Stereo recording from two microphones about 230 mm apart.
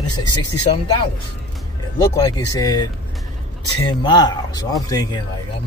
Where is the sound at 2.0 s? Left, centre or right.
Centre.